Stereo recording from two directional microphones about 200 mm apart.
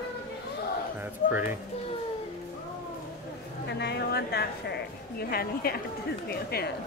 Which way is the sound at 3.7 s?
55° left (ahead or behind).